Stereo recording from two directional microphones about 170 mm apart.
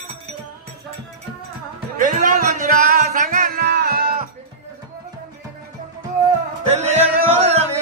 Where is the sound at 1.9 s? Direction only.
50° right (ahead or behind).